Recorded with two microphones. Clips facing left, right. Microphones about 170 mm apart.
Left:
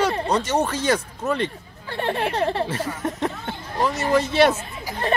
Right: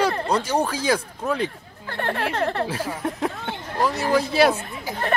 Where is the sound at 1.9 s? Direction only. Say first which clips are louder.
Left 2 dB; 20° left (ahead or behind).